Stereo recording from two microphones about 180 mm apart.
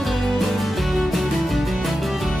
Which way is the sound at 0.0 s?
Centre (ahead or behind).